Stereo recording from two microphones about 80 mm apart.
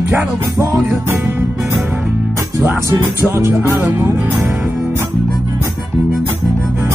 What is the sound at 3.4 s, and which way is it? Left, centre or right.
Music, right.